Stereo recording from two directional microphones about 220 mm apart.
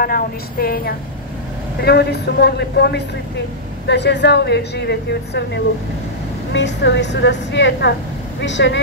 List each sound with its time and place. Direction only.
0.0 s a woman's voice: 40° left (ahead or behind)